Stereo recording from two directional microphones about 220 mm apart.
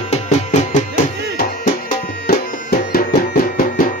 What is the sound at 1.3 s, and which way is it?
Music, 40° left (ahead or behind).